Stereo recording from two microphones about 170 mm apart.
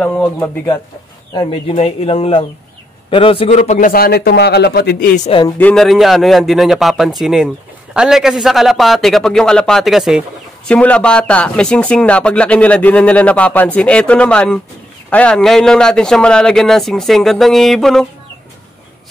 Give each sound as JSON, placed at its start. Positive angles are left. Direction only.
{"t": 0.0, "sound": "speech", "side_deg": 10}
{"t": 1.7, "sound": "speech", "side_deg": 40}
{"t": 5.6, "sound": "a man's voice", "side_deg": 5}